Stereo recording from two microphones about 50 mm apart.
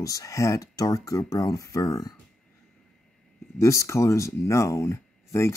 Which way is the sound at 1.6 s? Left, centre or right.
Left.